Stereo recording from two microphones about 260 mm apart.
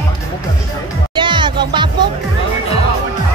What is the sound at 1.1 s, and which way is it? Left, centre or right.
Music, centre.